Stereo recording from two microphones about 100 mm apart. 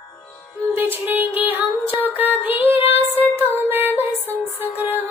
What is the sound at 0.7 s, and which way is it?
Music, 20° right (ahead or behind).